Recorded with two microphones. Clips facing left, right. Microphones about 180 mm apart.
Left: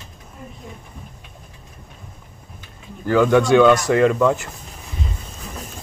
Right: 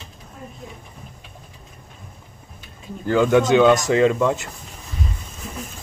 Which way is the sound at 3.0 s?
20° right (ahead or behind).